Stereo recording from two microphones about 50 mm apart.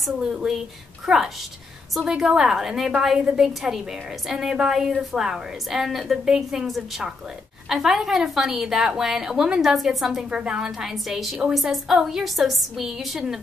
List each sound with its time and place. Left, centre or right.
0.2 s a woman's voice: centre
3.2 s a woman's voice: centre
3.4 s a woman's voice: centre
7.7 s a woman's voice: centre
10.3 s a woman's voice: centre